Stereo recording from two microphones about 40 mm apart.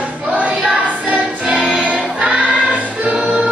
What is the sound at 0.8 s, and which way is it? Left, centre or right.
Music, right.